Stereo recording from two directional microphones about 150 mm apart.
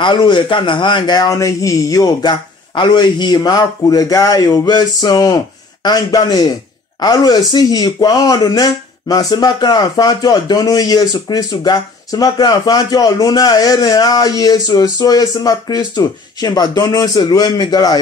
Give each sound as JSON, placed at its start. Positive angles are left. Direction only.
{"t": 0.0, "sound": "speech", "side_deg": 30}